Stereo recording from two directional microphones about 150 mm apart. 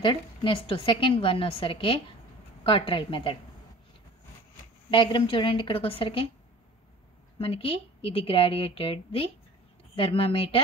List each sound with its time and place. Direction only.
0.0 s a woman's voice: 35° left (ahead or behind)
4.9 s a woman's voice: 35° left (ahead or behind)
7.3 s a woman's voice: 35° left (ahead or behind)